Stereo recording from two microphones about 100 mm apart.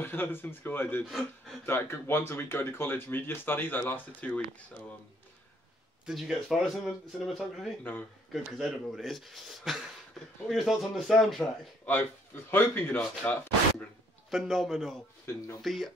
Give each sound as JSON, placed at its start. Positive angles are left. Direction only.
{"t": 0.0, "sound": "speech", "side_deg": 20}
{"t": 6.0, "sound": "speech", "side_deg": -5}
{"t": 12.4, "sound": "speech", "side_deg": 20}
{"t": 14.3, "sound": "speech", "side_deg": 0}
{"t": 15.2, "sound": "speech", "side_deg": 30}
{"t": 15.6, "sound": "speech", "side_deg": 0}